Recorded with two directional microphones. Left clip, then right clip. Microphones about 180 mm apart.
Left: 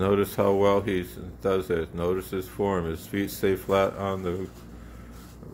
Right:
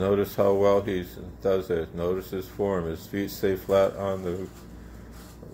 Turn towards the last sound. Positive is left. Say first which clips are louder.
# right 1 dB
turn(degrees=20)  # may be behind; listen again after turning